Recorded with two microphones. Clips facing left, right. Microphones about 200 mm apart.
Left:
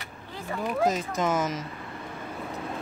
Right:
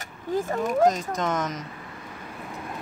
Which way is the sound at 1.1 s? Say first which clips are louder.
Left 1 dB; 5° left (ahead or behind).